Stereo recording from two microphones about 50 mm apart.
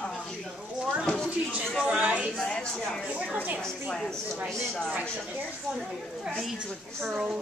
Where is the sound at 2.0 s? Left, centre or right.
Right.